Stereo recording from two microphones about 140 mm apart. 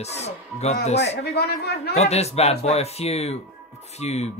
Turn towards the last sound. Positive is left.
turn(degrees=50)  # may be behind; listen again after turning